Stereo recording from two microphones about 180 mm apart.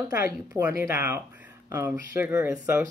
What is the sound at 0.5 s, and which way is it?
Speech, 15° right (ahead or behind).